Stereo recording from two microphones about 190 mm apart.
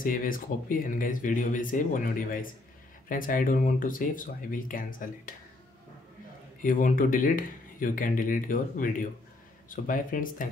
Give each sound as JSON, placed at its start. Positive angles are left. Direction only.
{"t": 0.0, "sound": "speech", "side_deg": 45}
{"t": 6.6, "sound": "speech", "side_deg": 45}